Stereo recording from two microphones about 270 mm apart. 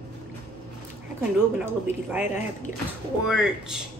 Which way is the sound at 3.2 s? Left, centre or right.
Centre.